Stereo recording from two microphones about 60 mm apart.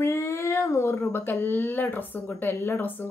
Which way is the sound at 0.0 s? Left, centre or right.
Left.